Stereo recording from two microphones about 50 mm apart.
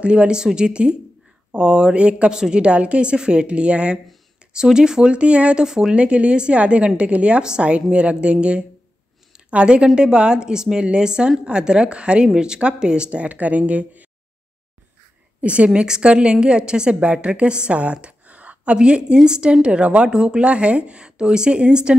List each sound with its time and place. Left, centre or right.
0.0 s a woman's voice: right
15.4 s a woman's voice: right
18.2 s a sound: right
19.2 s a woman's voice: centre